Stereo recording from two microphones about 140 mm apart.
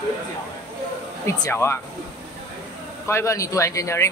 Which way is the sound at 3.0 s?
20° left (ahead or behind).